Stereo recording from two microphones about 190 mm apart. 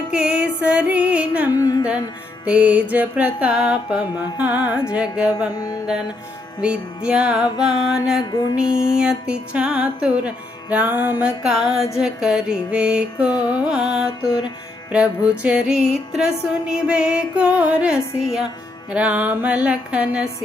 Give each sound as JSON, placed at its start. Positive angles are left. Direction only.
{"t": 0.1, "sound": "music", "side_deg": -5}
{"t": 1.6, "sound": "music", "side_deg": 15}
{"t": 2.4, "sound": "music", "side_deg": -5}
{"t": 6.6, "sound": "music", "side_deg": -5}